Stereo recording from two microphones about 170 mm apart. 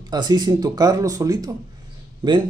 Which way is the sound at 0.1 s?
25° right (ahead or behind).